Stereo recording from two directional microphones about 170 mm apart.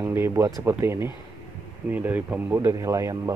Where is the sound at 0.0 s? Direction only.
15° right (ahead or behind).